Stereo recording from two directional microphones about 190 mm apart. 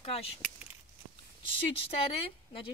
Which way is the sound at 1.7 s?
30° left (ahead or behind).